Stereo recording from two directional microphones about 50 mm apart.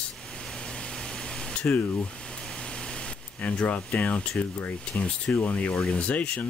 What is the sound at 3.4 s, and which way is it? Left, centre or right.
Speech, left.